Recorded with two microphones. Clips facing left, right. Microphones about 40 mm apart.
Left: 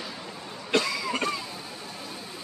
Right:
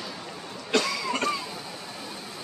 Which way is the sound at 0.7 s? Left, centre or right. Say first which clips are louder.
Even; centre.